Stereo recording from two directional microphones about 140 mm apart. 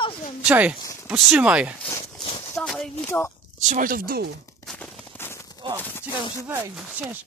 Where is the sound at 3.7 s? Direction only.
85° right.